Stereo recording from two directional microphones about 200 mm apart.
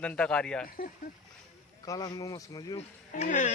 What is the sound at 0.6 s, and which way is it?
Speech, 45° left (ahead or behind).